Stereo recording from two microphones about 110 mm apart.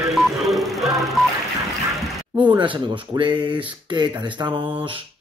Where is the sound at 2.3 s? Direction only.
45° right (ahead or behind).